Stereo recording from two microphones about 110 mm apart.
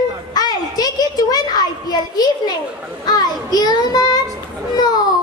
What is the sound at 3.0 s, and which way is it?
Child singing, 35° left (ahead or behind).